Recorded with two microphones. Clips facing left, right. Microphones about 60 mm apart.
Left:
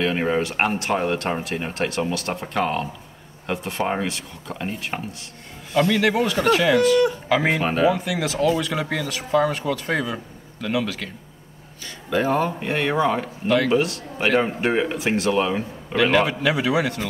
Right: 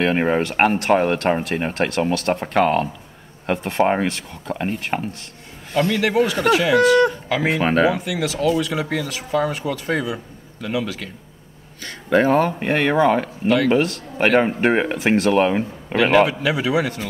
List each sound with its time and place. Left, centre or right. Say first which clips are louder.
0.0 s speech: right 3 dB; right
5.8 s speech: right 1 dB; centre
7.2 s speech: left 1 dB; centre
7.6 s speech: right 2 dB; right
8.1 s speech: right 1 dB; centre
11.8 s speech: right 5 dB; right
16.3 s speech: even; centre